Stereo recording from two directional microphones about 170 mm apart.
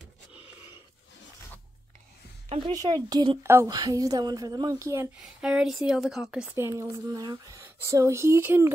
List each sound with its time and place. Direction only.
0.3 s a sound: 5° right (ahead or behind)
2.5 s speech: 25° right (ahead or behind)
5.2 s speech: 5° right (ahead or behind)
6.5 s speech: 15° right (ahead or behind)